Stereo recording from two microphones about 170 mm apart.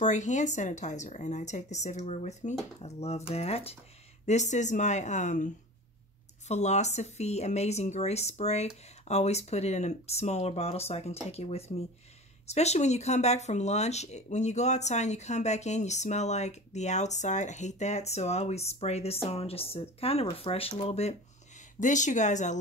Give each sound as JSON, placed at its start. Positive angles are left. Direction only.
{"t": 0.0, "sound": "speech", "side_deg": 45}